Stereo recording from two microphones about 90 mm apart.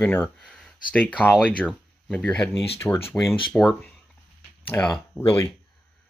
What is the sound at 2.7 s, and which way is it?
Speech, 25° left (ahead or behind).